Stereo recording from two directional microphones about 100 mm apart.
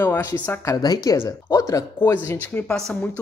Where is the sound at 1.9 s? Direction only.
20° left (ahead or behind).